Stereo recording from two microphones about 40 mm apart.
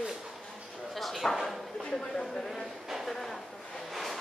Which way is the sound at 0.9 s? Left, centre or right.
Centre.